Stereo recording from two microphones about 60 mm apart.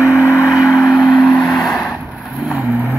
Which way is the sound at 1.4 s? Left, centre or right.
Centre.